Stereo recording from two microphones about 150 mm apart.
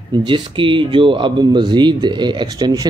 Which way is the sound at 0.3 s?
35° right (ahead or behind).